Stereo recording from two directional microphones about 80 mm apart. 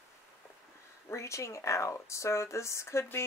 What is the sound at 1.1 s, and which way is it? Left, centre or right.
Speech, left.